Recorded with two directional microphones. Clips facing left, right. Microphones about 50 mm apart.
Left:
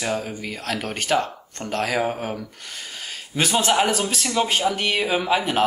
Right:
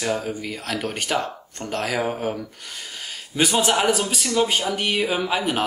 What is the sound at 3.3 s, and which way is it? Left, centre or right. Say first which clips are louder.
Speech: right 2 dB; centre.